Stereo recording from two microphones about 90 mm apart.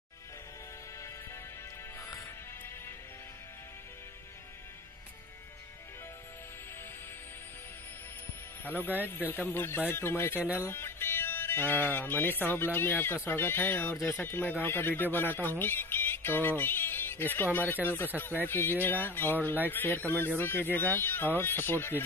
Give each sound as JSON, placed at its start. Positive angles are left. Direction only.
{"t": 2.0, "sound": "music", "side_deg": 30}
{"t": 8.6, "sound": "speech", "side_deg": 20}